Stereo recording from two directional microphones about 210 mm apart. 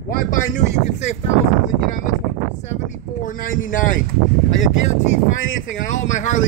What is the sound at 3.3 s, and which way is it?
Speech, 40° left (ahead or behind).